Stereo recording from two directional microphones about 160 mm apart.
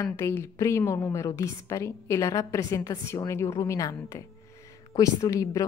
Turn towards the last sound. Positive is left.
turn(degrees=20)  # may be behind; listen again after turning